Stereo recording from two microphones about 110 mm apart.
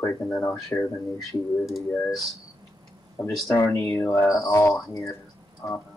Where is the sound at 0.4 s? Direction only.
25° left (ahead or behind).